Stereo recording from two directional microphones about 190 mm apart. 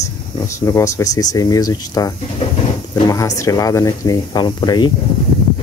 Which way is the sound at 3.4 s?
15° left (ahead or behind).